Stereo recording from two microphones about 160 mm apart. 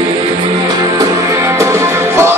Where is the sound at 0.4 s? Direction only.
25° right (ahead or behind).